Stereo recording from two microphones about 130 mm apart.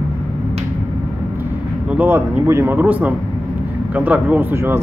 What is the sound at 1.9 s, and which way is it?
Speech, 15° right (ahead or behind).